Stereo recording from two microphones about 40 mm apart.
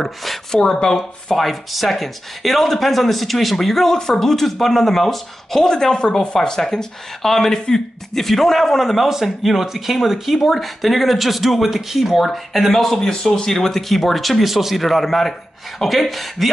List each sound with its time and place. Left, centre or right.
0.0 s a man's voice: centre
0.9 s a man's voice: centre